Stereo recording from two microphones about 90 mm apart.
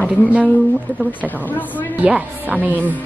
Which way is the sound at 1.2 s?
20° left (ahead or behind).